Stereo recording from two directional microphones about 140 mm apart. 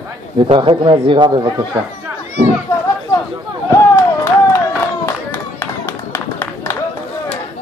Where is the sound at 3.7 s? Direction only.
15° left (ahead or behind).